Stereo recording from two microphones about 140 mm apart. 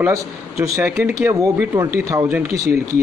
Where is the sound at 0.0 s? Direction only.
20° right (ahead or behind).